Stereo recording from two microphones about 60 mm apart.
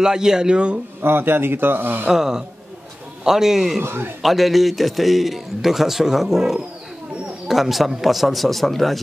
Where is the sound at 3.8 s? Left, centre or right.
Right.